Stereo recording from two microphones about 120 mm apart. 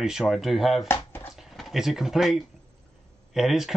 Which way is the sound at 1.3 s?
Centre (ahead or behind).